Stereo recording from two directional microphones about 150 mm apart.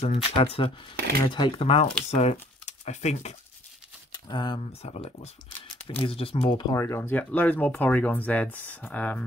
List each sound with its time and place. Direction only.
0.0 s speech: 40° left (ahead or behind)
2.0 s speech: 45° left (ahead or behind)
4.1 s speech: 30° left (ahead or behind)
4.8 s speech: 45° left (ahead or behind)
6.7 s speech: 20° left (ahead or behind)